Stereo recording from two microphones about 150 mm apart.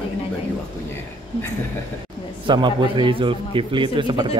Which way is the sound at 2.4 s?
30° right (ahead or behind).